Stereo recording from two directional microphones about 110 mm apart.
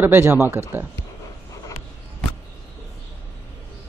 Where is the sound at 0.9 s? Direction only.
30° left (ahead or behind).